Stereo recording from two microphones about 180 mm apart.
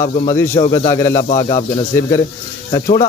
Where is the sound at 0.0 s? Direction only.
45° left (ahead or behind).